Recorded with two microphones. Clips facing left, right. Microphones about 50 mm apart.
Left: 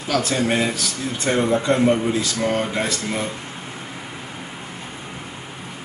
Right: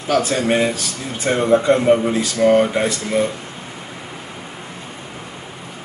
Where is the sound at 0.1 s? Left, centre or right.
Centre.